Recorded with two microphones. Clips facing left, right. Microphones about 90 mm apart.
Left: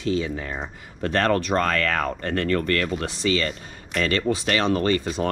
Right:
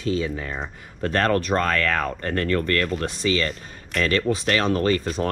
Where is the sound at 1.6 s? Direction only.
35° left (ahead or behind).